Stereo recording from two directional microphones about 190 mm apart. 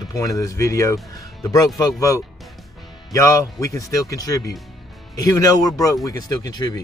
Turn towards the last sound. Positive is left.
turn(degrees=20)  # may be behind; listen again after turning